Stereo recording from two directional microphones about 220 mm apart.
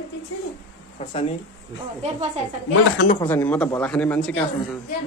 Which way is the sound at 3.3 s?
5° left (ahead or behind).